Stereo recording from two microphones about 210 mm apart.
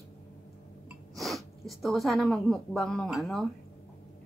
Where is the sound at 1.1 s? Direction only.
Centre (ahead or behind).